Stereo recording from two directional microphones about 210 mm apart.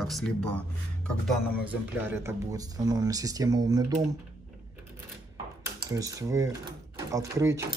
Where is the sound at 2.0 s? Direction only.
10° right (ahead or behind).